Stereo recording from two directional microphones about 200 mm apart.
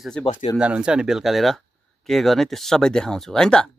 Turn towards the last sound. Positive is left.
turn(degrees=5)  # may be behind; listen again after turning